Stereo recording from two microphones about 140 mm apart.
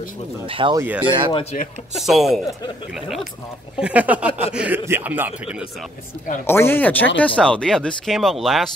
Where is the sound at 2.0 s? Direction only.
Centre (ahead or behind).